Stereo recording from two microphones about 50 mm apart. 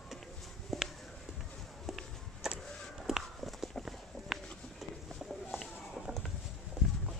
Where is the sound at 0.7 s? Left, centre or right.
Centre.